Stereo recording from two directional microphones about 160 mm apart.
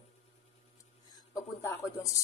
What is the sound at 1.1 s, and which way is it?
Speech, 20° left (ahead or behind).